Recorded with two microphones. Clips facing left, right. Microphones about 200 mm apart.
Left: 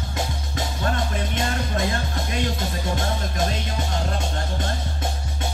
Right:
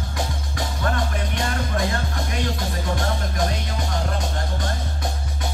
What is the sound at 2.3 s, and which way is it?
Music, 25° left (ahead or behind).